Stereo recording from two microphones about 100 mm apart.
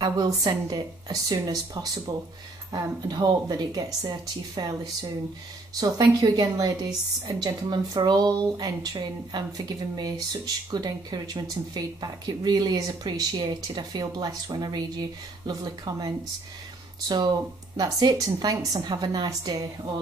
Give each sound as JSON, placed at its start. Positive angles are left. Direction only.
{"t": 0.0, "sound": "speech", "side_deg": -35}
{"t": 5.8, "sound": "speech", "side_deg": -40}
{"t": 17.1, "sound": "speech", "side_deg": -45}